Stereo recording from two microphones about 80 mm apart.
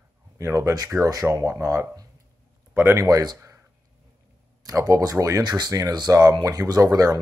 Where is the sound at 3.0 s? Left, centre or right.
Right.